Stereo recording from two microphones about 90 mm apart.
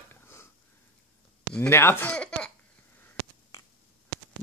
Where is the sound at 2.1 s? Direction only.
10° left (ahead or behind).